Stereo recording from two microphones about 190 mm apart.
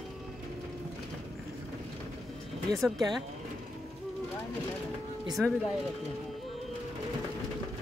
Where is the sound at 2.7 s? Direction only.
20° right (ahead or behind).